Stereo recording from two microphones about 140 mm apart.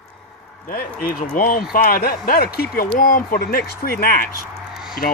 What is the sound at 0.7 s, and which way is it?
Speech, 80° left.